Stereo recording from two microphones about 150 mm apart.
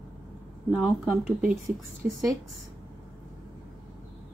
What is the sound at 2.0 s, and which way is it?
Speech, 20° right (ahead or behind).